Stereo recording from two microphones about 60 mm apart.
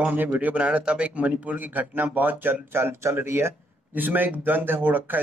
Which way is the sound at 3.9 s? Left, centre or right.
Right.